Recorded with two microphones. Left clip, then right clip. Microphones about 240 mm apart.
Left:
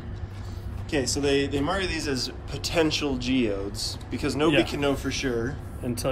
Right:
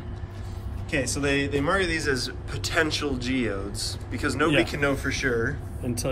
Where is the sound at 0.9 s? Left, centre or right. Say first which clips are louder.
Left 1 dB; centre.